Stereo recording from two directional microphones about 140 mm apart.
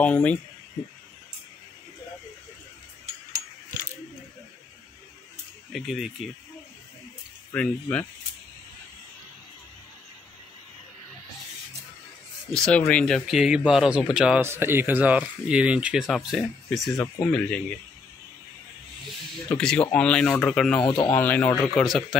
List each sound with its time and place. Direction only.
0.0 s speech: 10° left (ahead or behind)
5.7 s speech: centre (ahead or behind)
7.5 s speech: 10° left (ahead or behind)
12.4 s speech: 5° left (ahead or behind)
14.4 s speech: 15° right (ahead or behind); by 16.9 s centre (ahead or behind)
17.0 s speech: 15° left (ahead or behind)
19.5 s speech: 5° left (ahead or behind)
20.8 s speech: 35° left (ahead or behind)
21.1 s speech: 15° left (ahead or behind)
21.7 s speech: centre (ahead or behind)